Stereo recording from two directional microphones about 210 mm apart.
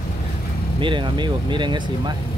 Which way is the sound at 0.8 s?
25° right (ahead or behind).